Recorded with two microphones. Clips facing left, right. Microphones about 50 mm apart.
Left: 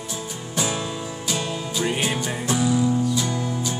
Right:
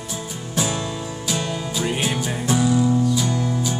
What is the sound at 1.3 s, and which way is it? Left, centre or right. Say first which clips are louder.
Music: right 2 dB; centre.